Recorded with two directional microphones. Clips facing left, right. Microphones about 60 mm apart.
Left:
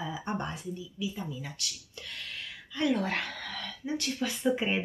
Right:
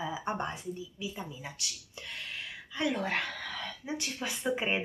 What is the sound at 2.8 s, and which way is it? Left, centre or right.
Speech, centre.